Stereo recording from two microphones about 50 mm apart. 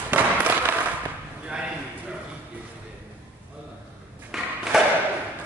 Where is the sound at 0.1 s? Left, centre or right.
Right.